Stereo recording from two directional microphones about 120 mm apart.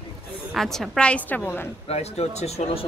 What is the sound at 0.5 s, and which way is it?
A woman's voice, 5° left (ahead or behind).